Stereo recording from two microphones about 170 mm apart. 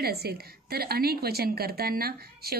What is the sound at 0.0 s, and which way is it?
A woman's voice, 65° right (ahead or behind).